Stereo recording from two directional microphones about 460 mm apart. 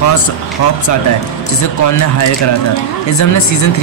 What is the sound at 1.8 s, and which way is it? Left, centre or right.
Speech, left.